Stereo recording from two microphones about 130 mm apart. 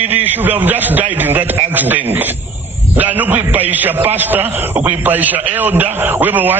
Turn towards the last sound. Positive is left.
turn(degrees=-15)  # may be behind; listen again after turning